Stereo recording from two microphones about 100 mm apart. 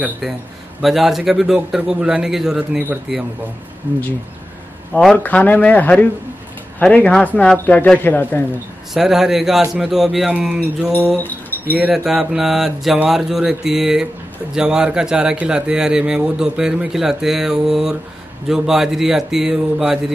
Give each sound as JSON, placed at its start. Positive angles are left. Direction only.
{"t": 0.7, "sound": "speech", "side_deg": -5}
{"t": 3.9, "sound": "speech", "side_deg": -20}
{"t": 5.1, "sound": "a man's voice", "side_deg": 15}
{"t": 8.9, "sound": "speech", "side_deg": -5}
{"t": 11.1, "sound": "keys jangling", "side_deg": 20}
{"t": 11.9, "sound": "speech", "side_deg": -5}